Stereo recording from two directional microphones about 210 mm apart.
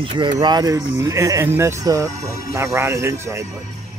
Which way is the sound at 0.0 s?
25° right (ahead or behind).